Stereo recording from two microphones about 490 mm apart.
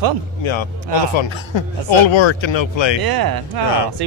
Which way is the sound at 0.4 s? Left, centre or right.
Left.